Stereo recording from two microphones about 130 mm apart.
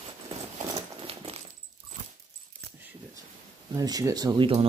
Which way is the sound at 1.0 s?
50° right (ahead or behind).